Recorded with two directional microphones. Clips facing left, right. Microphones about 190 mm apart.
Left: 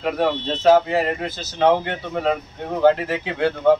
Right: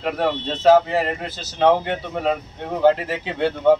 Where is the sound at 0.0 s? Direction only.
Centre (ahead or behind).